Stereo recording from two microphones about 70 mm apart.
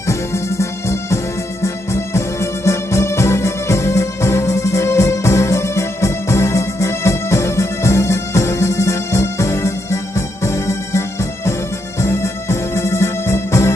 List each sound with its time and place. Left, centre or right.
0.0 s music: left